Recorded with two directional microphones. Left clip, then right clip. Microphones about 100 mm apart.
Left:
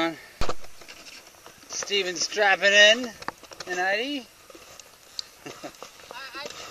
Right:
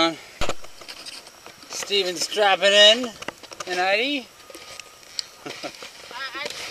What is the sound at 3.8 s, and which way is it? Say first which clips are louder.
Speech: right 5 dB; 25° left (ahead or behind).